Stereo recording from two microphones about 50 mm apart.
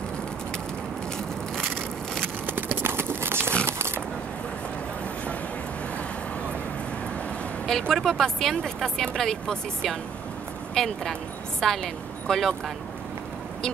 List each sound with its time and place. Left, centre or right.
1.6 s crushing: centre
2.4 s a sound: right
7.9 s a woman's voice: centre